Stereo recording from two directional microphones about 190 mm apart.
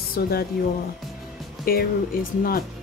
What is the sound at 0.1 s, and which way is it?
Speech, 55° left (ahead or behind).